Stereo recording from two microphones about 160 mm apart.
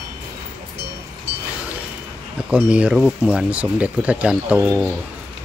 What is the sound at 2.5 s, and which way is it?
Speech, 5° right (ahead or behind).